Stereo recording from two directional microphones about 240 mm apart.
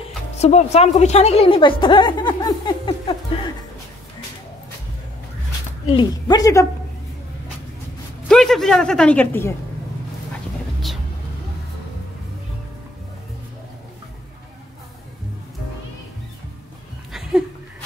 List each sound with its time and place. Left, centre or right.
0.4 s a woman's voice: left
5.9 s speech: centre
8.3 s speech: centre
17.1 s a sound: centre